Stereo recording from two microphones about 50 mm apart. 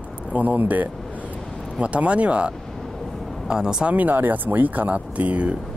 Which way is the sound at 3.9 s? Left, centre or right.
Right.